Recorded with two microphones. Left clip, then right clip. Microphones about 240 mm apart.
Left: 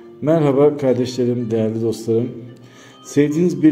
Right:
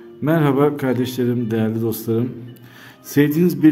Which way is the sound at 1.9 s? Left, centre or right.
Centre.